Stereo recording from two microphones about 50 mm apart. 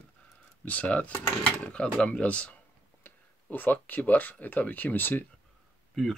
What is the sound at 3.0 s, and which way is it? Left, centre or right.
Speech, left.